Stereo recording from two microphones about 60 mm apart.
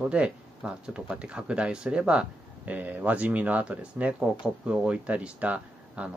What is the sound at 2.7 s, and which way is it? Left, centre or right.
Speech, right.